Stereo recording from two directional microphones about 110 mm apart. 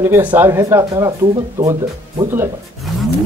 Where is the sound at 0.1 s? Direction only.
15° right (ahead or behind); by 1.1 s 30° right (ahead or behind).